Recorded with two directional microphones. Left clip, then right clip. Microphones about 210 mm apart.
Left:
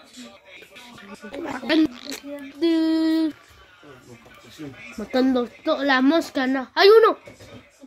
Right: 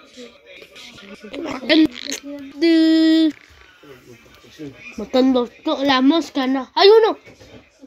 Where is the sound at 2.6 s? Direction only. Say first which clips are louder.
Right 6 dB; 20° right (ahead or behind).